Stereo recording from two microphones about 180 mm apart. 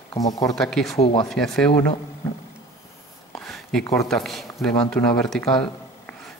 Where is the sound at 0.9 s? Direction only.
35° left (ahead or behind).